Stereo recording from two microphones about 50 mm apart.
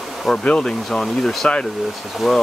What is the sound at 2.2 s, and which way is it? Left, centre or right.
Speech, centre.